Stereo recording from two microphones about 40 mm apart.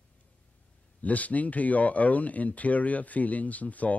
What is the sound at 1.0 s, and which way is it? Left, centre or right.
Speech, left.